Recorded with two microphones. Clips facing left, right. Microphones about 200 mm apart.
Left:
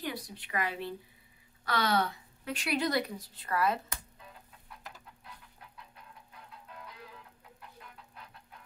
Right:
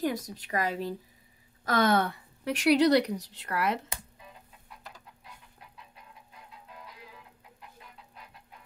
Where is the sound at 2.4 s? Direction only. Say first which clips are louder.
Right 9 dB; 75° right (ahead or behind).